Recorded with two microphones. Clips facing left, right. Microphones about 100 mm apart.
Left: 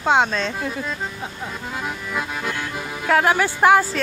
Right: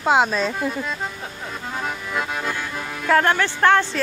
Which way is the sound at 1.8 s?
Centre (ahead or behind).